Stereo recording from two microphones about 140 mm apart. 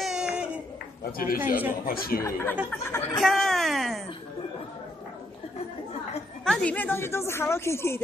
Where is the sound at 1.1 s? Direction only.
90° left.